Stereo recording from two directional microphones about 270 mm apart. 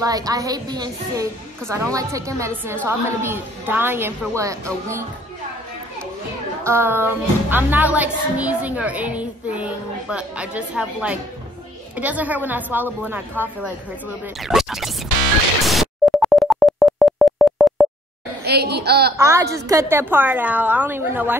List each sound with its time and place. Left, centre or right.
0.0 s a woman's voice: centre
6.6 s a woman's voice: centre
14.4 s speech: centre
15.6 s dial tone: centre
18.4 s a woman's voice: right
19.1 s a woman's voice: centre